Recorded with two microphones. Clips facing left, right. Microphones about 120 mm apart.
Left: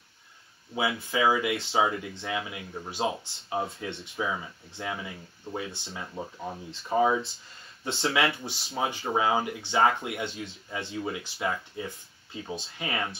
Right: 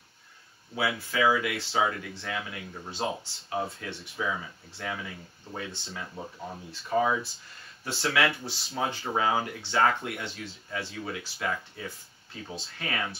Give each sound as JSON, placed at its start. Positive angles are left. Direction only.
{"t": 0.7, "sound": "speech", "side_deg": 20}
{"t": 6.7, "sound": "speech", "side_deg": 25}